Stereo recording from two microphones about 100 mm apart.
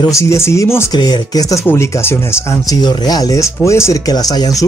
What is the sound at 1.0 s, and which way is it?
Speech, 40° left (ahead or behind).